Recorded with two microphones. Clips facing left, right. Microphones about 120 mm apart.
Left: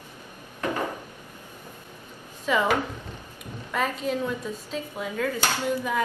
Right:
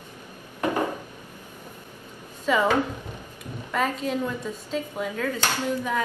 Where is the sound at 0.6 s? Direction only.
15° right (ahead or behind).